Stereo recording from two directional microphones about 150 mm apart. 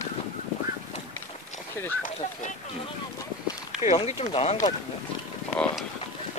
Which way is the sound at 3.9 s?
35° left (ahead or behind).